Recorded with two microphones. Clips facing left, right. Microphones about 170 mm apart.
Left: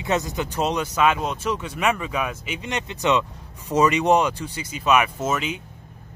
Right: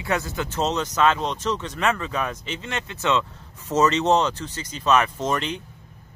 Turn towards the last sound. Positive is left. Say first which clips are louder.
# even
turn(degrees=5)  # may be behind; listen again after turning